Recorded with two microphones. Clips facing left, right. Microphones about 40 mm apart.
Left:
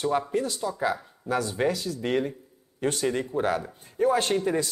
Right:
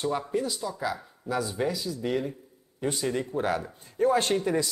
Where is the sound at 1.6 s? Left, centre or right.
Left.